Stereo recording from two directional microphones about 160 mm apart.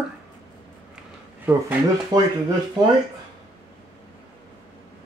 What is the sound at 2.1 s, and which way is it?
Speech, 25° right (ahead or behind).